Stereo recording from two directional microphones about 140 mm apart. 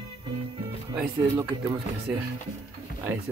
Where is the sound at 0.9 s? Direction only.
15° right (ahead or behind).